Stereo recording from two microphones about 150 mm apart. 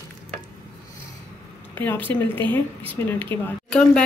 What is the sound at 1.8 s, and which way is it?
A woman's voice, 10° left (ahead or behind).